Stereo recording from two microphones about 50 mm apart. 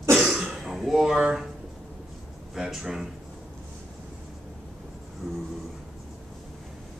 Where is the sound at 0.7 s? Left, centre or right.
Centre.